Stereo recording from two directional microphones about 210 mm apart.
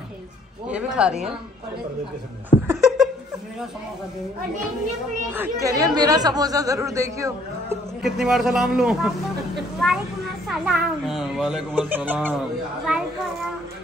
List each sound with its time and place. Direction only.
0.7 s a child's voice: 5° right (ahead or behind)
2.6 s a sound: 10° right (ahead or behind)
5.3 s speech: 10° right (ahead or behind)
8.0 s a child's voice: centre (ahead or behind)
10.5 s a child's voice: centre (ahead or behind)